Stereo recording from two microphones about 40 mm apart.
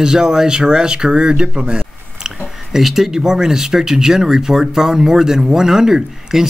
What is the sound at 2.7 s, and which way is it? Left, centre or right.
Speech, centre.